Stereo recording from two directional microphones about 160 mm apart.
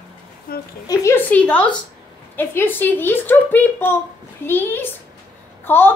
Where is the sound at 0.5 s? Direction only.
65° left (ahead or behind).